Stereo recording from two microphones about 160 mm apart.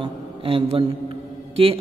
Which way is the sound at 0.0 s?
35° right (ahead or behind).